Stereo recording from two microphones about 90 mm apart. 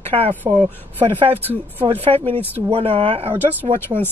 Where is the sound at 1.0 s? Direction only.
80° right.